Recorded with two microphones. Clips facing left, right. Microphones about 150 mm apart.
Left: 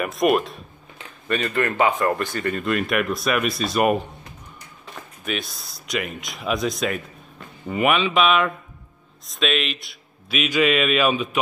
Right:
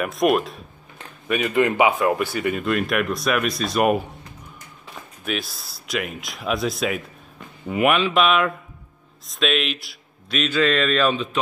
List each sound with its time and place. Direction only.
0.0 s speech: centre (ahead or behind)
5.2 s a man's voice: centre (ahead or behind)
10.4 s speech: 10° left (ahead or behind)